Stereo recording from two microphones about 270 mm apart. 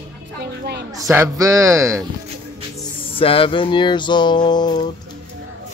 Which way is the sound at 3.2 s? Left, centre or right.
Centre.